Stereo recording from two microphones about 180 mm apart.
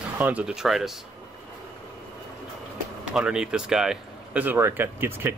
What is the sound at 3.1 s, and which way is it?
Speech, 5° right (ahead or behind).